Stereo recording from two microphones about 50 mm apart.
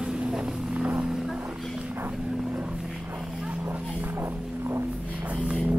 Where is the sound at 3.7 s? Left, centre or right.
Right.